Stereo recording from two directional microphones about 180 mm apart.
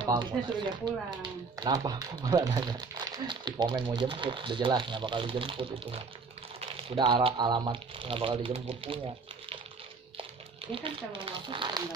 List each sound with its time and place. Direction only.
0.0 s speech: 25° right (ahead or behind)
10.7 s speech: 25° right (ahead or behind)